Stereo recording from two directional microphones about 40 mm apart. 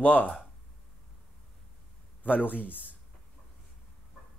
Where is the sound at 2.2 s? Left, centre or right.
Left.